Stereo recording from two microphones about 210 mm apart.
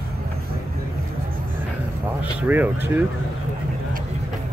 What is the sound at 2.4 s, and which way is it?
Speech, 10° right (ahead or behind).